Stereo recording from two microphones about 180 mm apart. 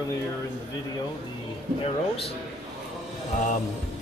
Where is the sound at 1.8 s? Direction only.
30° left (ahead or behind).